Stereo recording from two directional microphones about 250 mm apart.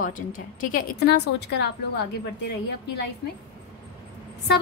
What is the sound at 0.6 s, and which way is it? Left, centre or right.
Speech, left.